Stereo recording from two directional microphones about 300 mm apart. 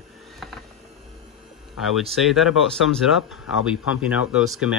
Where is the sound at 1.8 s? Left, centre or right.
Centre.